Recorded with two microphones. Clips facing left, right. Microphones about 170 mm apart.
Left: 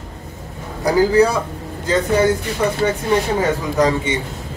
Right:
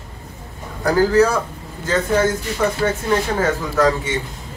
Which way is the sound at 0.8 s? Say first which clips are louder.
Left 1 dB; 15° left (ahead or behind).